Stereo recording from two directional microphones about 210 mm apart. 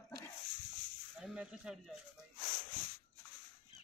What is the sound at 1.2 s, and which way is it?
Speech, 5° right (ahead or behind).